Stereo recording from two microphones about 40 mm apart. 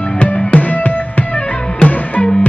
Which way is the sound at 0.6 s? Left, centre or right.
Left.